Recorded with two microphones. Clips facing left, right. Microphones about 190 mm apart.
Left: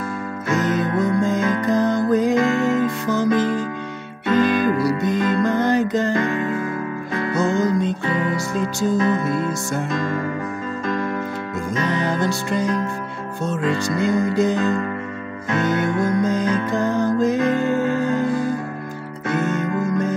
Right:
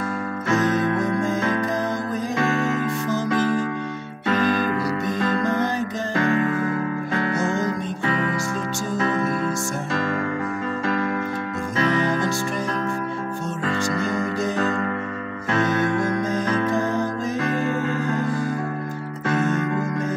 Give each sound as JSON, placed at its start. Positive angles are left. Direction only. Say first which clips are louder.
{"t": 4.3, "sound": "music", "louder": "left 4 dB", "side_deg": 25}
{"t": 5.7, "sound": "music", "louder": "left 8 dB", "side_deg": 70}
{"t": 7.3, "sound": "music", "louder": "left 8 dB", "side_deg": 35}